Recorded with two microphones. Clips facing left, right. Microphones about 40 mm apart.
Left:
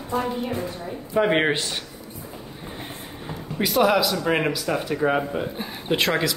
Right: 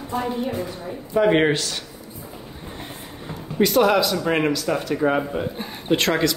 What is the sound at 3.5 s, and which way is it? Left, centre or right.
Speech, centre.